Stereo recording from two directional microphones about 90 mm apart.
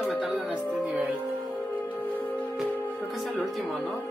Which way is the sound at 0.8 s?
20° right (ahead or behind).